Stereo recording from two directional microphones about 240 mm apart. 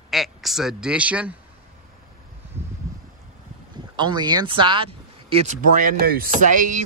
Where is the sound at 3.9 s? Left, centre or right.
Centre.